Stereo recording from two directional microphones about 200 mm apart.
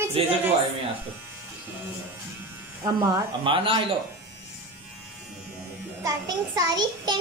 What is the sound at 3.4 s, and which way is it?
Speech, 25° right (ahead or behind).